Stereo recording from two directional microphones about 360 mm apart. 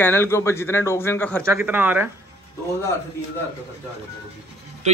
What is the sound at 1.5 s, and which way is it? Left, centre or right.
Speech, centre.